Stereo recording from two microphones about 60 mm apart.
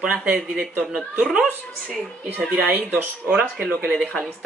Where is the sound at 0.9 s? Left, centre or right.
Centre.